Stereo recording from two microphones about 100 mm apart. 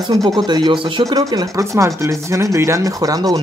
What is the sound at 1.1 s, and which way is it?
Speech, 35° right (ahead or behind).